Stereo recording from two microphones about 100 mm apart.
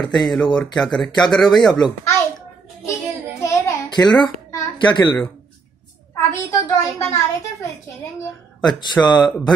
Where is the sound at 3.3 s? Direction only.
30° left (ahead or behind).